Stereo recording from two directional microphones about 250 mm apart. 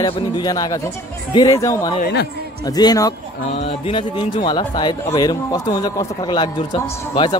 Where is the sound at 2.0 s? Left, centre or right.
Left.